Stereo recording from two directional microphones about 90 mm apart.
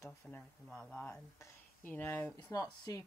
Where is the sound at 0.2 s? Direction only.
10° left (ahead or behind).